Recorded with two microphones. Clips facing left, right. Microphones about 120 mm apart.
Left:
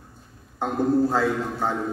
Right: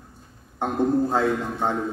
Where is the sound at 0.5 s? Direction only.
20° right (ahead or behind).